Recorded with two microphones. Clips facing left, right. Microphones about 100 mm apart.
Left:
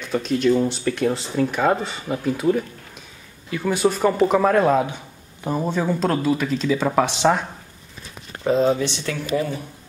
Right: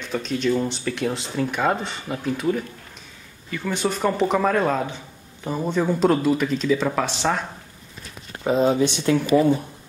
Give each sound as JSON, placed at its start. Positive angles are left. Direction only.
{"t": 0.0, "sound": "speech", "side_deg": 5}
{"t": 6.8, "sound": "speech", "side_deg": 15}
{"t": 8.5, "sound": "speech", "side_deg": -5}
{"t": 9.1, "sound": "speech", "side_deg": -30}